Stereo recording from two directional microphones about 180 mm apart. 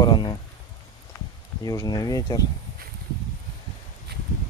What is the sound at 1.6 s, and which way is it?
Speech, 20° left (ahead or behind).